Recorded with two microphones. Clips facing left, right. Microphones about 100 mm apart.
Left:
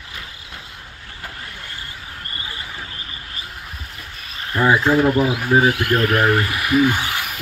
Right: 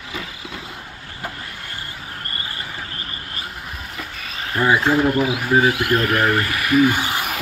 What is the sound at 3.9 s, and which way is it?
Frog, 90° right.